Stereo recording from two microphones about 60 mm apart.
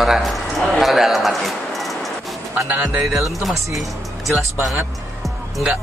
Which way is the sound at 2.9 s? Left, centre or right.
Right.